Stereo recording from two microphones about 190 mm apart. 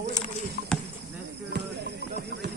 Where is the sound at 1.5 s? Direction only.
60° right (ahead or behind).